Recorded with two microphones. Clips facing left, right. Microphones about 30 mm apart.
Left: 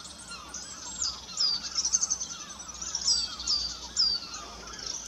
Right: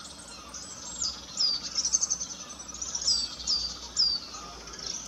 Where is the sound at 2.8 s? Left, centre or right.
Left.